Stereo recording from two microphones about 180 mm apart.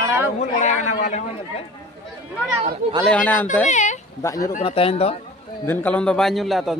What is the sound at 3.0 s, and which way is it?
Speech, 5° left (ahead or behind).